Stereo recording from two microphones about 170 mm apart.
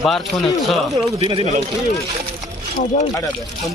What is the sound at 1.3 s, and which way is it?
Speech, 40° right (ahead or behind).